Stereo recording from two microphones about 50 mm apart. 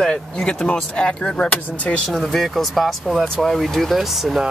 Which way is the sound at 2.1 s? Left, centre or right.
Centre.